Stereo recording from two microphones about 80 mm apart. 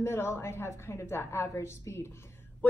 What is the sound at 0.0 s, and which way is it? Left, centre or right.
A woman's voice, left.